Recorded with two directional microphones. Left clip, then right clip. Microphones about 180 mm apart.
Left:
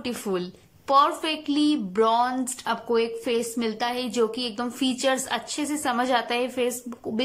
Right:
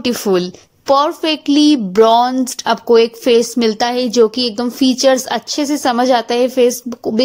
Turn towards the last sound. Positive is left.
turn(degrees=-35)  # may be behind; listen again after turning